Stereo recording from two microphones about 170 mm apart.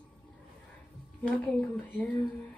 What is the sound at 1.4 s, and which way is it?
Speech, 5° left (ahead or behind).